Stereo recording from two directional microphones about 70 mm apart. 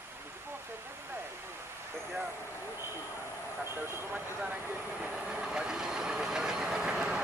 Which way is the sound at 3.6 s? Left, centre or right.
Right.